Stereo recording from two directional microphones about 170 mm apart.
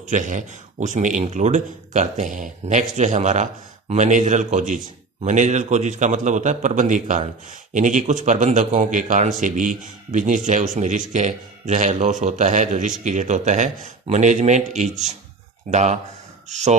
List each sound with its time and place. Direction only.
0.1 s a man's voice: 50° right (ahead or behind)